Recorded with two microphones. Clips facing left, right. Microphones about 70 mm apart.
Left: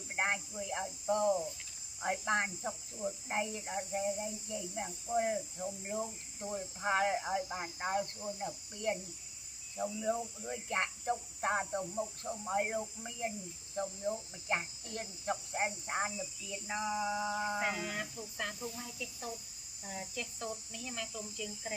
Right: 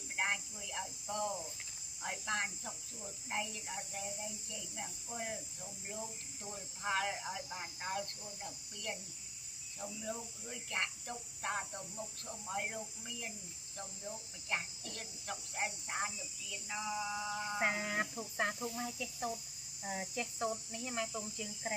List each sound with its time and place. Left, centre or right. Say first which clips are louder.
0.1 s speech: left 3 dB; left
17.6 s speech: right 1 dB; right
19.9 s speech: right 2 dB; right